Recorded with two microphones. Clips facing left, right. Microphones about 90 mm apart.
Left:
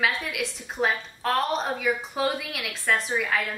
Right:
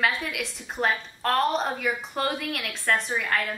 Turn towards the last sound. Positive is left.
turn(degrees=0)  # may be behind; listen again after turning